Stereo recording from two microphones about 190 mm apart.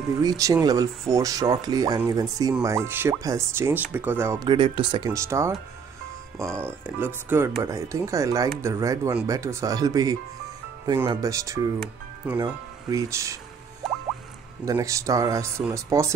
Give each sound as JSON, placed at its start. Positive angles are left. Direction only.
{"t": 0.2, "sound": "speech", "side_deg": -20}
{"t": 4.5, "sound": "speech", "side_deg": -25}
{"t": 12.2, "sound": "speech", "side_deg": -5}
{"t": 13.8, "sound": "music", "side_deg": 0}
{"t": 14.6, "sound": "speech", "side_deg": -20}